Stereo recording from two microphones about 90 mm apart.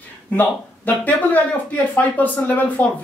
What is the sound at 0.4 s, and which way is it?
Speech, 20° left (ahead or behind).